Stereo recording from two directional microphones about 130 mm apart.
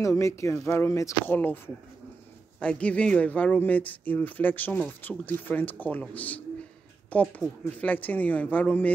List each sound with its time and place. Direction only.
0.0 s speech: 25° left (ahead or behind)
2.6 s speech: 10° left (ahead or behind)